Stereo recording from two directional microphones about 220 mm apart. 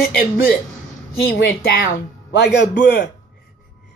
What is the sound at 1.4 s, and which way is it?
Speech, 45° left (ahead or behind).